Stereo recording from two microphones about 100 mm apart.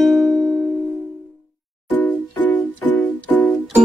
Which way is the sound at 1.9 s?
10° left (ahead or behind).